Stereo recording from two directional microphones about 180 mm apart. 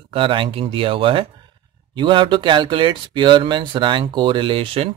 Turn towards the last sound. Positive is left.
turn(degrees=-30)  # may be behind; listen again after turning